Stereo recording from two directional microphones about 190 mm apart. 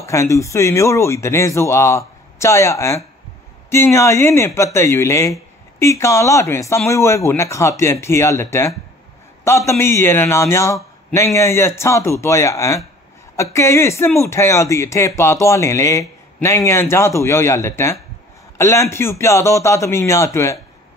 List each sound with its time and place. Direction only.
0.0 s a man's voice: 15° left (ahead or behind)